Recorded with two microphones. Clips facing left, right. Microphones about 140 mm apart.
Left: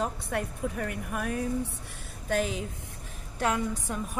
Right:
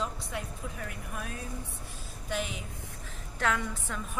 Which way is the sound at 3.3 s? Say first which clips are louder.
Left 3 dB; 15° left (ahead or behind).